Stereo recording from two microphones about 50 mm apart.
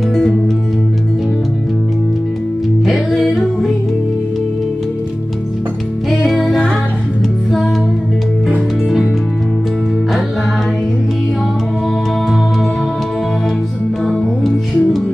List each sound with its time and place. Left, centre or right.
2.8 s music: centre
14.4 s music: centre